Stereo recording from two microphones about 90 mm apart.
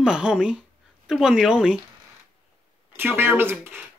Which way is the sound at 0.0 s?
10° right (ahead or behind).